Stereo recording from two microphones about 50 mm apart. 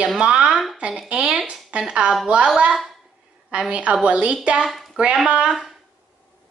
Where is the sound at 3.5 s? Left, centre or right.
Right.